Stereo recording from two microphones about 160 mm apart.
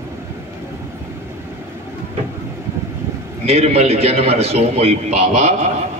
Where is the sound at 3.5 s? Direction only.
40° right (ahead or behind).